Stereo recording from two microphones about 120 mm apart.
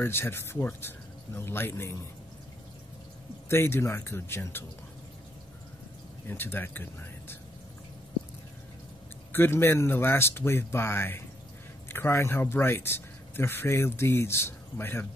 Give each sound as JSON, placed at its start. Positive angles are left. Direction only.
{"t": 0.0, "sound": "speech", "side_deg": 20}
{"t": 3.4, "sound": "speech", "side_deg": 20}
{"t": 6.2, "sound": "speech", "side_deg": 15}
{"t": 9.3, "sound": "speech", "side_deg": 20}